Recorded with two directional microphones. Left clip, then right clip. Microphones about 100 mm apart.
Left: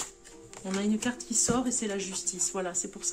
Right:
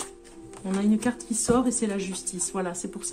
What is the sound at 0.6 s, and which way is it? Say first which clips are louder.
Speech: right 4 dB; 15° right (ahead or behind).